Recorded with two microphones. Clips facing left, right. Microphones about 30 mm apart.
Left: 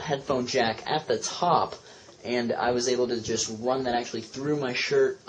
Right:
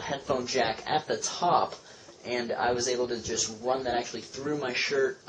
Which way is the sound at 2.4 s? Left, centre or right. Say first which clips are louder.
Left 2 dB; centre.